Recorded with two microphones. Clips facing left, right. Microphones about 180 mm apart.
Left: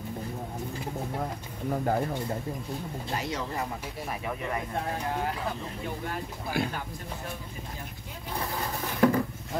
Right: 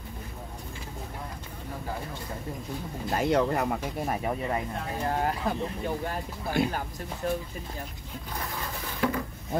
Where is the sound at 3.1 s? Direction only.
55° right (ahead or behind).